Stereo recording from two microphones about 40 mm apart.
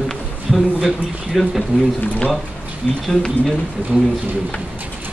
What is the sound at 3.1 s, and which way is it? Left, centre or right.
Speech, centre.